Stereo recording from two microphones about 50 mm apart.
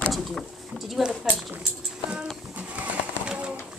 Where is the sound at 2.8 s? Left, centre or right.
Right.